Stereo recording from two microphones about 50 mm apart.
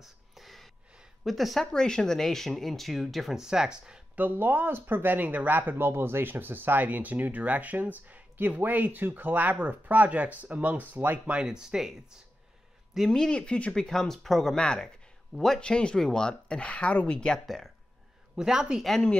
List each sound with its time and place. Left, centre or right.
0.0 s gasp: centre
1.2 s speech: centre
1.7 s speech: centre
3.4 s speech: centre
4.2 s speech: right
11.4 s speech: centre
13.1 s speech: centre
14.6 s speech: centre
15.3 s speech: centre
15.6 s speech: centre
17.5 s speech: centre
18.3 s speech: centre